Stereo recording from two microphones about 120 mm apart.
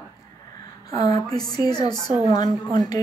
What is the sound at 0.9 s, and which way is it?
Speech, 30° left (ahead or behind).